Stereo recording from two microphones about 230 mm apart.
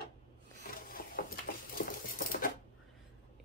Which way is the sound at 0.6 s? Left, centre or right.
Left.